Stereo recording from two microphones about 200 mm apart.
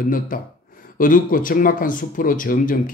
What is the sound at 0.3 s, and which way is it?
Speech, 45° left (ahead or behind).